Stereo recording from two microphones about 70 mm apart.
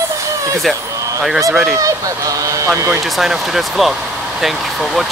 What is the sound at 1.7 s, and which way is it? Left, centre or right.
Speech, right.